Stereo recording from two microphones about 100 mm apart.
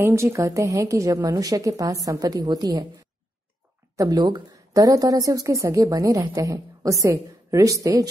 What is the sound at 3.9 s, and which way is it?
A woman's voice, 40° right (ahead or behind).